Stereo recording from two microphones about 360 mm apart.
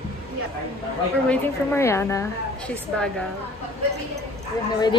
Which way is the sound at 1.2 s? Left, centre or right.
Centre.